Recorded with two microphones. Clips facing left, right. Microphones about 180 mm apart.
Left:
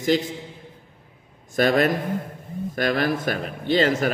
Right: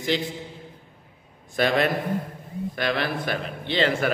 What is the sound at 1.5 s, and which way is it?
A man's voice, 45° left (ahead or behind).